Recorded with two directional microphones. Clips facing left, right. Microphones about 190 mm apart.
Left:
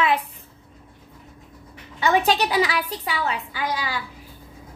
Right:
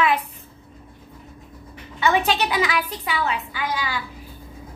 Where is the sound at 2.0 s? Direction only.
35° left (ahead or behind).